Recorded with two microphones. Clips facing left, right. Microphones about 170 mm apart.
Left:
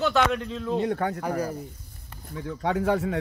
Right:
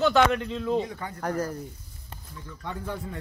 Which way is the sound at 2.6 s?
85° left.